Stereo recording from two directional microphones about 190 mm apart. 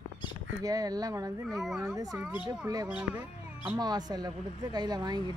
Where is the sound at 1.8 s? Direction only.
20° right (ahead or behind).